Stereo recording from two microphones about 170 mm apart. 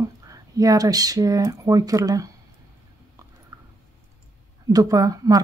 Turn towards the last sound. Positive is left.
turn(degrees=-20)  # may be behind; listen again after turning